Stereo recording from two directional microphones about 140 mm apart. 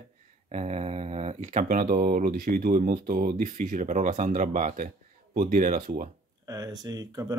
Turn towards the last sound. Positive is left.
turn(degrees=-25)  # may be behind; listen again after turning